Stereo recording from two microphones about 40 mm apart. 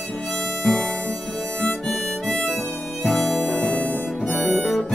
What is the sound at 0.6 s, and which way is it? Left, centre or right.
Music, left.